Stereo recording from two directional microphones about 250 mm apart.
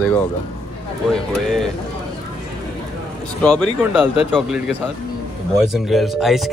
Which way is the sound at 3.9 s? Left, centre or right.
Centre.